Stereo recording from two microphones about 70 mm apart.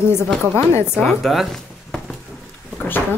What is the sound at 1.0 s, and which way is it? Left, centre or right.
Speech, centre.